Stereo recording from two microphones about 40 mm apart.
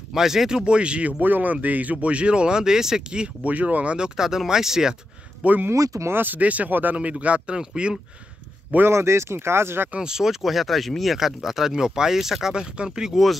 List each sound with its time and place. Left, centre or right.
0.1 s speech: centre; by 1.1 s right
1.2 s speech: right; by 3.3 s centre
3.4 s speech: right
4.2 s speech: centre
5.7 s speech: right
6.2 s speech: right
6.7 s speech: right
7.0 s speech: right
8.8 s speech: right
10.0 s speech: centre
12.5 s speech: centre
13.1 s speech: centre